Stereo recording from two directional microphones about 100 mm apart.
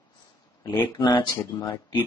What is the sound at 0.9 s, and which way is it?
Speech, 40° left (ahead or behind).